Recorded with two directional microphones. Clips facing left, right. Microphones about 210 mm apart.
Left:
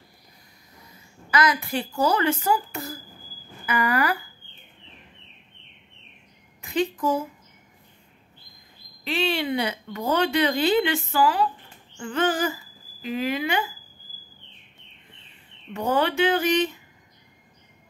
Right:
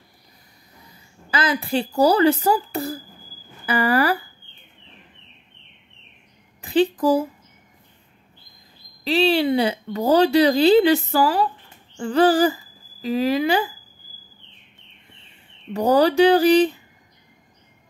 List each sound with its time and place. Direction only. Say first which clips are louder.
1.3 s a woman's voice: right 2 dB; 30° right (ahead or behind)
6.6 s a woman's voice: right 6 dB; 35° right (ahead or behind)
9.0 s a woman's voice: right 7 dB; 30° right (ahead or behind)
15.7 s a woman's voice: right 7 dB; 35° right (ahead or behind)